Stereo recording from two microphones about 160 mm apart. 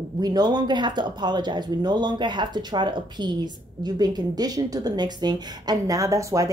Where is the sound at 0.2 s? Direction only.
25° right (ahead or behind).